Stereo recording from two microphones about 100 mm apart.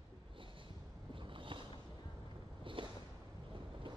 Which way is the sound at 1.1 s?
60° right (ahead or behind).